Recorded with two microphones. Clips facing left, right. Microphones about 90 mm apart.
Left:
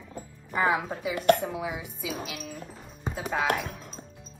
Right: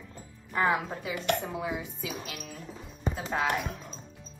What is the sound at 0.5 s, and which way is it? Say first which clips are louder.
A woman's voice: left 1 dB; 15° left (ahead or behind).